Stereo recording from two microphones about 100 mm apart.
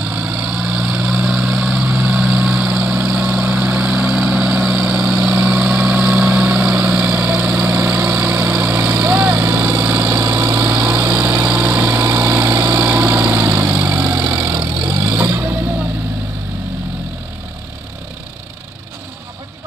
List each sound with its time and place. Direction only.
0.1 s vehicle: 10° right (ahead or behind)
8.9 s vehicle: 40° right (ahead or behind)
10.1 s engine: 40° right (ahead or behind)
10.8 s light engine: 10° right (ahead or behind)
12.0 s vehicle: 40° right (ahead or behind)
12.6 s vehicle: 10° right (ahead or behind)
14.5 s vehicle: 40° right (ahead or behind)
15.0 s vehicle: 30° right (ahead or behind)